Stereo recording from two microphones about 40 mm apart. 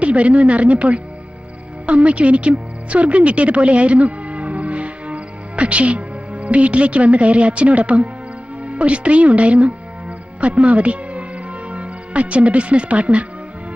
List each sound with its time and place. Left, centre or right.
0.0 s a woman's voice: right